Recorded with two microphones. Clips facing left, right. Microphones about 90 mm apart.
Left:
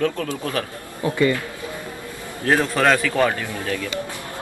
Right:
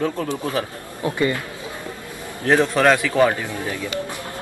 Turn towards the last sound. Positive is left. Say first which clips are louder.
# even
turn(degrees=-20)  # may be behind; listen again after turning